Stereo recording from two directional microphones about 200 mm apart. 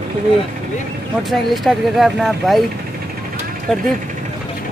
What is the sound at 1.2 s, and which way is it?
Speech, centre (ahead or behind).